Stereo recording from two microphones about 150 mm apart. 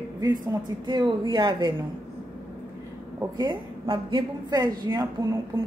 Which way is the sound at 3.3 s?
30° right (ahead or behind).